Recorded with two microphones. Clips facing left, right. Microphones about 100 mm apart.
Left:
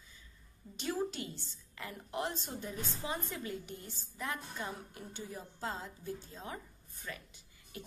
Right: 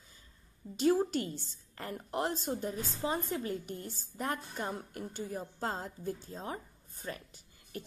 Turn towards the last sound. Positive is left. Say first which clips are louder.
# right 4 dB
turn(degrees=-45)  # may be behind; listen again after turning